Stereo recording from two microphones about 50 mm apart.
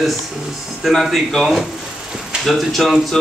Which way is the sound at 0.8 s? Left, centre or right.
Centre.